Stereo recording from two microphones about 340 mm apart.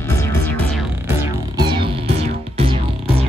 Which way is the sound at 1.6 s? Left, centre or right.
Centre.